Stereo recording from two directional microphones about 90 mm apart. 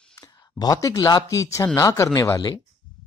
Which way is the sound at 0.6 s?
40° left (ahead or behind).